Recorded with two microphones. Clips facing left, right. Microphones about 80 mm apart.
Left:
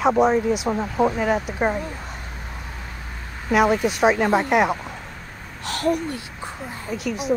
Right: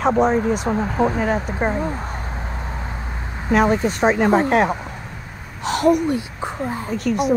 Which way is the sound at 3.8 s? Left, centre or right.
Centre.